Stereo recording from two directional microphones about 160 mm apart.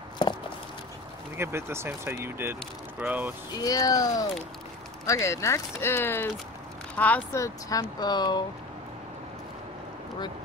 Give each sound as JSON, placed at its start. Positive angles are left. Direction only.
{"t": 1.3, "sound": "speech", "side_deg": -15}
{"t": 3.5, "sound": "speech", "side_deg": 20}